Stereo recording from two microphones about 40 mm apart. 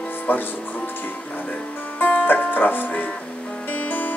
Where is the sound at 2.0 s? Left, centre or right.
Left.